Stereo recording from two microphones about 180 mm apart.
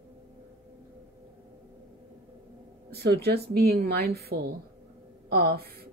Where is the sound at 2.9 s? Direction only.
65° right (ahead or behind).